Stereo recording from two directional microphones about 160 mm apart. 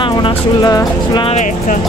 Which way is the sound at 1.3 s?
50° left (ahead or behind).